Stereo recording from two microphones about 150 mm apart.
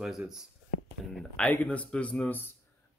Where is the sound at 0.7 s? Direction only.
55° left (ahead or behind).